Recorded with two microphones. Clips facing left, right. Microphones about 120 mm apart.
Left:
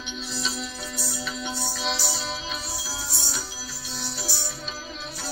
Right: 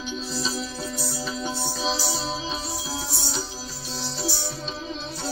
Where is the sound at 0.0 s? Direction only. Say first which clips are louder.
Right 4 dB; 35° right (ahead or behind).